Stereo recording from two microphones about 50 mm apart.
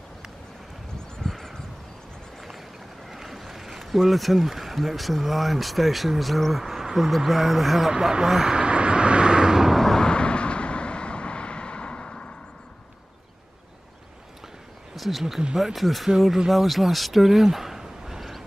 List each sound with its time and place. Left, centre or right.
1.2 s a sound: centre
3.1 s speech: centre
8.5 s vehicle: right
9.8 s vehicle: centre
15.0 s speech: centre